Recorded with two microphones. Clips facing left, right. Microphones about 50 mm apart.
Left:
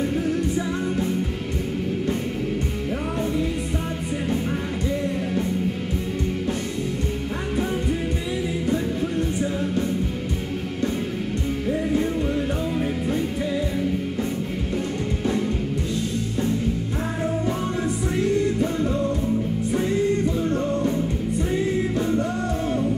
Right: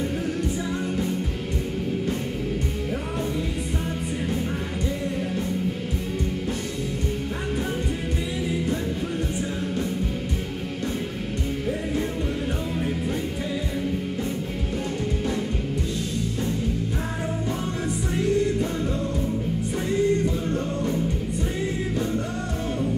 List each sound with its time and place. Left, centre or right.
18.1 s music: centre